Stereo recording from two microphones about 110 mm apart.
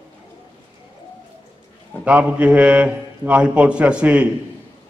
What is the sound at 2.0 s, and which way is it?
A man's voice, 10° right (ahead or behind).